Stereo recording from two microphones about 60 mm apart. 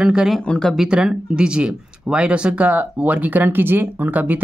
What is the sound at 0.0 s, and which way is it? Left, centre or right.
Speech, centre.